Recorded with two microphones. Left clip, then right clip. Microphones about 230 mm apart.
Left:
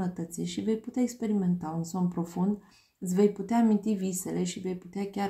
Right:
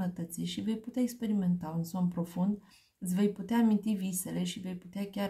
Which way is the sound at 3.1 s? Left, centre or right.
Right.